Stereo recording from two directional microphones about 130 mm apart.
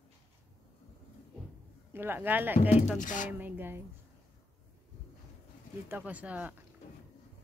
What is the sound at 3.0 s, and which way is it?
Speech, 80° left.